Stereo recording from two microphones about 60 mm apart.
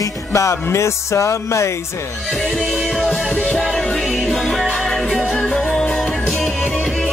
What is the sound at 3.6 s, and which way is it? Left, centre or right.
Music, centre.